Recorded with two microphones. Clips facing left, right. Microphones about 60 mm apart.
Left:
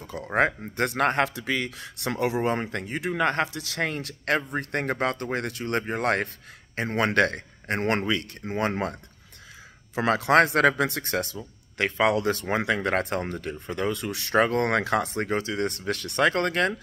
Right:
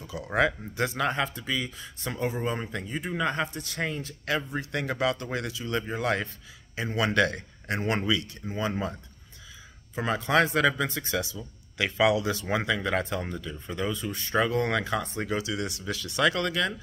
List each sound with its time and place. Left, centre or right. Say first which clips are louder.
0.0 s speech: left 2 dB; left
0.8 s speech: left 5 dB; left
4.4 s speech: left 3 dB; left
8.5 s speech: left 4 dB; left
9.9 s speech: left 5 dB; left
15.2 s speech: left 3 dB; left